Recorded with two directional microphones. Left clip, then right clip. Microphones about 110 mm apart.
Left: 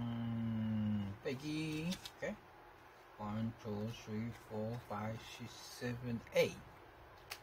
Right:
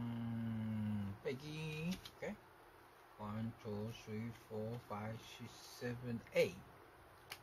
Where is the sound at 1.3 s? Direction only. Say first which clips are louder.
Left 4 dB; 45° right (ahead or behind).